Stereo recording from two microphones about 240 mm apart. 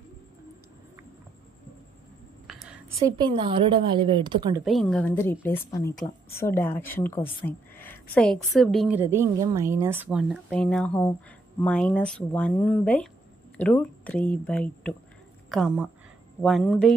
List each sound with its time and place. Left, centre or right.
2.4 s a sound: centre
3.0 s speech: centre
4.6 s a woman's voice: centre